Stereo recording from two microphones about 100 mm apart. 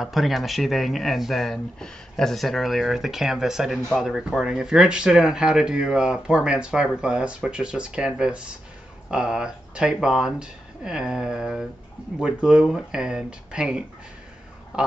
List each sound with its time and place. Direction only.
0.0 s speech: centre (ahead or behind)